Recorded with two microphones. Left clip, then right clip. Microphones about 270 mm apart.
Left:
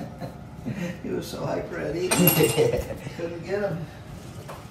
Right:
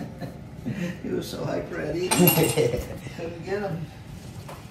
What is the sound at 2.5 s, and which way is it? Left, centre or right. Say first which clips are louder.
Speech: left 2 dB; centre.